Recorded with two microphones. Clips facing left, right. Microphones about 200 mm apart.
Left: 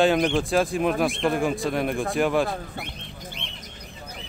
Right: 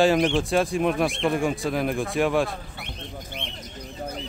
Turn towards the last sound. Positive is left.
turn(degrees=-55)  # may be behind; listen again after turning